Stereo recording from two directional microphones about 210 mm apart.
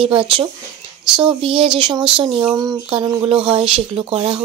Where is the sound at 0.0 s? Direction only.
25° right (ahead or behind).